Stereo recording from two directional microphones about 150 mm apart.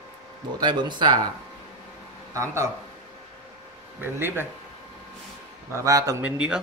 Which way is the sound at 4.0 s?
15° right (ahead or behind).